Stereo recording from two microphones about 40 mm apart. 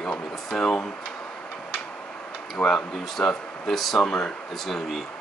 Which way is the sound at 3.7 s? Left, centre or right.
Centre.